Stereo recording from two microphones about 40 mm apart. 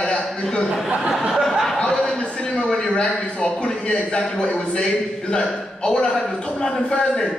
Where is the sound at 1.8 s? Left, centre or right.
Centre.